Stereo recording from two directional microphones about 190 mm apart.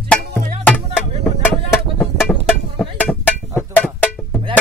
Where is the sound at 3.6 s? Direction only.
10° left (ahead or behind).